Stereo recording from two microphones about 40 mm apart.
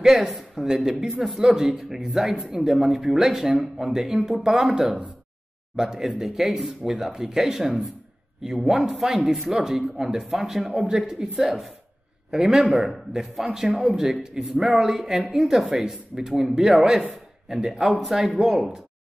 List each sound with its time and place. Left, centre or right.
0.0 s speech: centre
14.5 s a man's voice: right
14.8 s speech: centre